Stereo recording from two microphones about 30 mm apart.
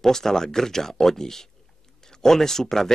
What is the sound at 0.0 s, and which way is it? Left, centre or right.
Speech, centre.